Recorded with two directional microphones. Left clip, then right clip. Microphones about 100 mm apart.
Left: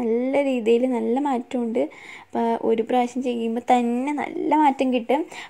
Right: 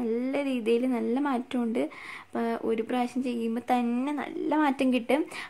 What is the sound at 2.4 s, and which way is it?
A woman's voice, 25° left (ahead or behind).